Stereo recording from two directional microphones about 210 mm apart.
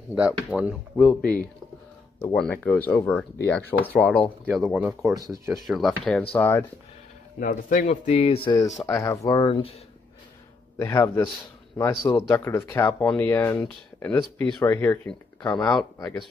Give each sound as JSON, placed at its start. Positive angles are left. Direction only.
{"t": 0.5, "sound": "speech", "side_deg": -5}
{"t": 2.1, "sound": "speech", "side_deg": 5}
{"t": 5.1, "sound": "speech", "side_deg": -15}
{"t": 5.5, "sound": "speech", "side_deg": 0}
{"t": 7.3, "sound": "speech", "side_deg": 40}
{"t": 10.8, "sound": "speech", "side_deg": 15}
{"t": 15.4, "sound": "speech", "side_deg": 20}
{"t": 15.7, "sound": "speech", "side_deg": 5}